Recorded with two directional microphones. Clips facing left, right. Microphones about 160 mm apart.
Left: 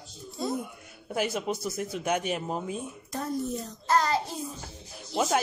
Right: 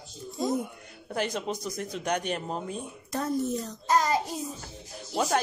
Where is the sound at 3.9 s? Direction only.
15° right (ahead or behind).